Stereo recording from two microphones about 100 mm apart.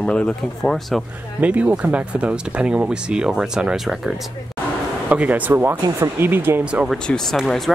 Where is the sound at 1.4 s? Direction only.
15° right (ahead or behind).